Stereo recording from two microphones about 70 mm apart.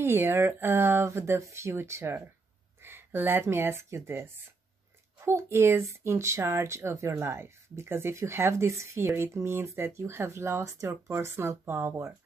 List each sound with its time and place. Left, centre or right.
0.0 s speech: right